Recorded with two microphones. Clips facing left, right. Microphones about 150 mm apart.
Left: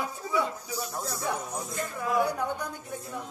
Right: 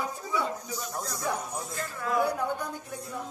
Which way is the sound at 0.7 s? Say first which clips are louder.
Left 1 dB; 10° left (ahead or behind).